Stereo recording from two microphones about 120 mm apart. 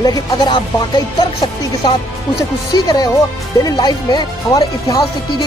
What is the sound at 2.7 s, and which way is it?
Speech, 35° left (ahead or behind).